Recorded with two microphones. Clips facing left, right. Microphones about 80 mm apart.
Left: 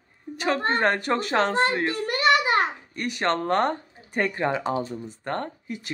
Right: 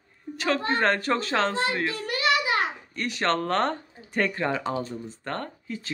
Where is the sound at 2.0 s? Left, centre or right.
Left.